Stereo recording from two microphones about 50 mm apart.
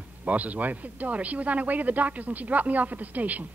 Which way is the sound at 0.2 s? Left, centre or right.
Right.